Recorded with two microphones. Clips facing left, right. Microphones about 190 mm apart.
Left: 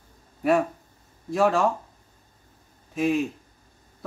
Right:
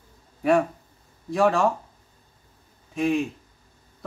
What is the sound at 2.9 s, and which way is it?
Speech, centre (ahead or behind).